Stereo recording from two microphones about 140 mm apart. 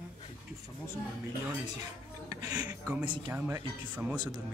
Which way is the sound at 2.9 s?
10° right (ahead or behind).